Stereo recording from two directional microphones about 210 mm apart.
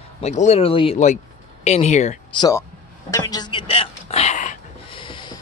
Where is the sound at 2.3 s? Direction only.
15° left (ahead or behind).